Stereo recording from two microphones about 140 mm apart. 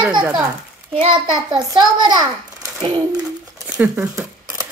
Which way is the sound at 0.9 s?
35° right (ahead or behind).